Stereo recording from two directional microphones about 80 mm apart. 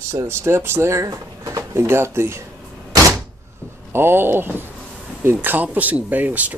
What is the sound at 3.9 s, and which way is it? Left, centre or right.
Speech, right.